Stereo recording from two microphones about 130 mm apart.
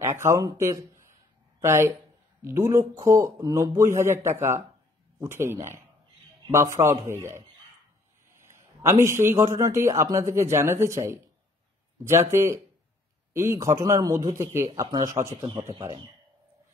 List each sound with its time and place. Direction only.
0.0 s speech: 20° right (ahead or behind)
8.5 s a man's voice: 20° right (ahead or behind)